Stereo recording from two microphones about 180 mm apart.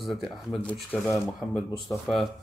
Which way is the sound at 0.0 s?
Centre (ahead or behind).